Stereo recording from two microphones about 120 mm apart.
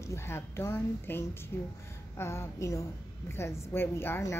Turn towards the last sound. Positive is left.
turn(degrees=20)  # may be behind; listen again after turning